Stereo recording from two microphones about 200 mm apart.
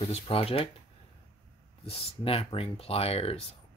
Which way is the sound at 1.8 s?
30° left (ahead or behind).